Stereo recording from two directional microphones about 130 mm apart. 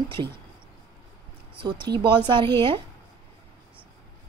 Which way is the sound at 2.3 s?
40° right (ahead or behind).